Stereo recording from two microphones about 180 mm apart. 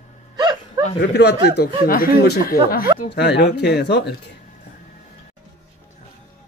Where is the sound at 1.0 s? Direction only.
70° left (ahead or behind).